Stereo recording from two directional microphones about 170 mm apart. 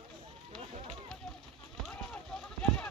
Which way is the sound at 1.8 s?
5° left (ahead or behind).